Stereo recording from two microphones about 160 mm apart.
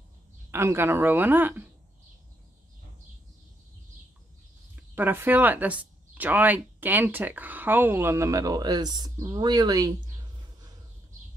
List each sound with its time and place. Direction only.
0.5 s speech: 15° right (ahead or behind)
4.7 s speech: 10° right (ahead or behind)